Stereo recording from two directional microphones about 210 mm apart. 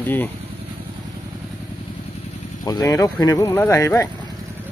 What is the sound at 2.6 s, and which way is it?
Speech, 15° left (ahead or behind).